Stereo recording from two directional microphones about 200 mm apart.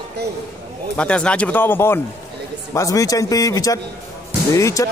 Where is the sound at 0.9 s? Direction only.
5° left (ahead or behind).